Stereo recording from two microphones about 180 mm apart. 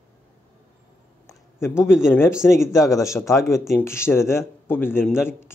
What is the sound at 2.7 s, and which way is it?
Speech, 15° left (ahead or behind).